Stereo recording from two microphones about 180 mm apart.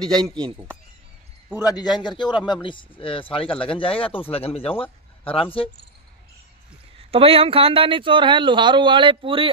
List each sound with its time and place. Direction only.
0.2 s speech: 5° left (ahead or behind)
1.6 s a man's voice: 20° left (ahead or behind)
7.0 s speech: 30° right (ahead or behind)